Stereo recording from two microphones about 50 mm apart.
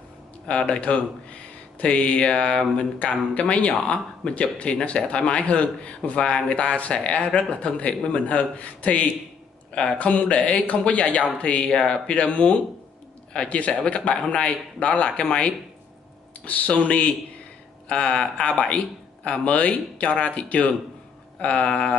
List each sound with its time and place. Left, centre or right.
0.5 s a man's voice: left
17.8 s a man's voice: centre